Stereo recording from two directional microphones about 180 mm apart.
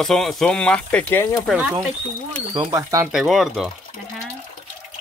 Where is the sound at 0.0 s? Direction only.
Centre (ahead or behind).